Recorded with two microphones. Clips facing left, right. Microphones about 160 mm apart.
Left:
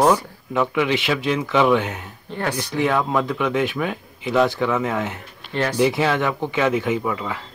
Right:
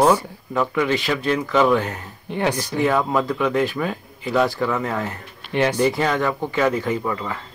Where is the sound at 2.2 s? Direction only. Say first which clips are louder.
Right 4 dB; 15° right (ahead or behind).